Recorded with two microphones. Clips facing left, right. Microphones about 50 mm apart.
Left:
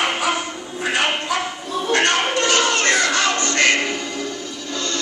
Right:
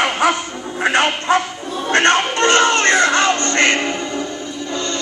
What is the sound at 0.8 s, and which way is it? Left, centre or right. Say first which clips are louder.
Bow-wow: right 4 dB; right.